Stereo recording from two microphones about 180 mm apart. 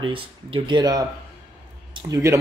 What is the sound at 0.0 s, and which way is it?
Speech, 30° right (ahead or behind).